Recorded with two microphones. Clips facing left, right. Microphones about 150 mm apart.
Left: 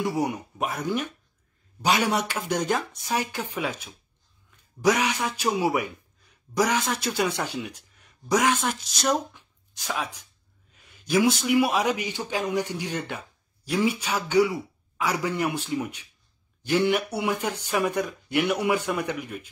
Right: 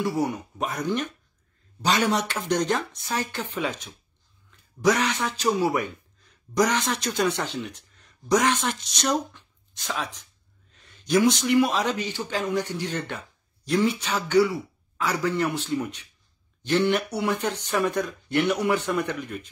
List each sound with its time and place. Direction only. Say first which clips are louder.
0.0 s a man's voice: right 1 dB; 15° left (ahead or behind)